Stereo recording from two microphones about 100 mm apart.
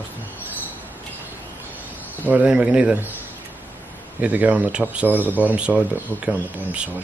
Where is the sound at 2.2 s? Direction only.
15° right (ahead or behind).